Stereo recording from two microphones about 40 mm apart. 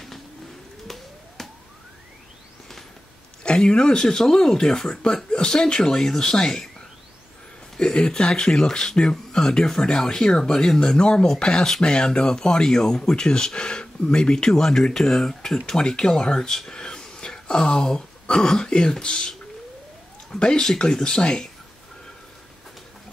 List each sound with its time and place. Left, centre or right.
0.8 s siren: centre
3.4 s speech: left
7.7 s a sound: centre
8.0 s speech: left